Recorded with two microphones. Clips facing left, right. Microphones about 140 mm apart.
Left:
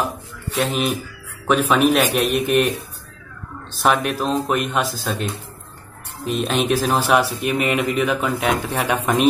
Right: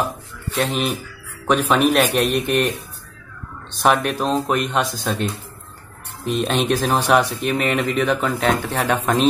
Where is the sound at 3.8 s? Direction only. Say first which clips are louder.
Right 1 dB; centre (ahead or behind).